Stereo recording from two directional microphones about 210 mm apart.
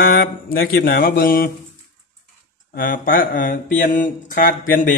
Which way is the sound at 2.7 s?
40° left (ahead or behind).